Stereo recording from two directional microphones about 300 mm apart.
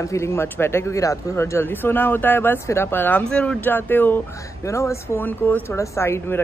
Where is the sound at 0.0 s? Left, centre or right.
Centre.